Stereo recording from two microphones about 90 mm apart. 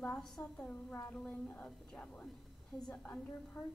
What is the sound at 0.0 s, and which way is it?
A woman's voice, 10° left (ahead or behind).